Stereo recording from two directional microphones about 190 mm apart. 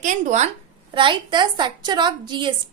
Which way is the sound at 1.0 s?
25° right (ahead or behind).